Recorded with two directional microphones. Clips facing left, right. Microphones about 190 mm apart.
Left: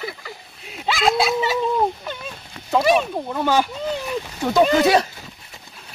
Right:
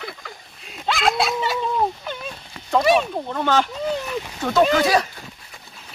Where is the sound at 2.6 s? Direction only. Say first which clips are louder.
Even; 5° left (ahead or behind).